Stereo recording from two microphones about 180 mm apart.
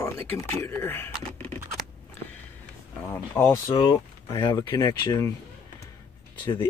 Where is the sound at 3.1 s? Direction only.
15° left (ahead or behind).